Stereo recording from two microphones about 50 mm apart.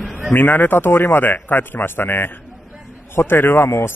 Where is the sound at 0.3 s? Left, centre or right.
Left.